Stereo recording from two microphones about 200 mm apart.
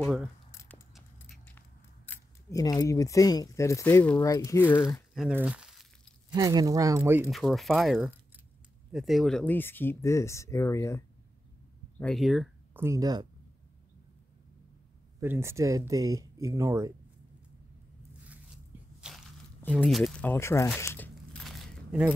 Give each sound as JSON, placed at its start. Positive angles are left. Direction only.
{"t": 0.5, "sound": "keys jangling", "side_deg": 15}
{"t": 0.9, "sound": "keys jangling", "side_deg": 0}
{"t": 2.0, "sound": "speech", "side_deg": 20}
{"t": 6.3, "sound": "speech", "side_deg": -20}
{"t": 7.2, "sound": "speech", "side_deg": 0}
{"t": 12.0, "sound": "speech", "side_deg": 0}
{"t": 12.8, "sound": "speech", "side_deg": -15}
{"t": 15.1, "sound": "speech", "side_deg": -10}
{"t": 18.9, "sound": "crushing", "side_deg": -5}
{"t": 19.7, "sound": "speech", "side_deg": 0}
{"t": 20.8, "sound": "crumpling", "side_deg": 10}